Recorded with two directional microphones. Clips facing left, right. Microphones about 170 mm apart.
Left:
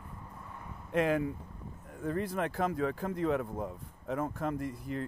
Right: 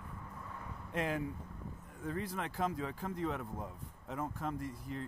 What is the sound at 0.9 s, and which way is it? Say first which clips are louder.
Speech: left 8 dB; 70° left (ahead or behind).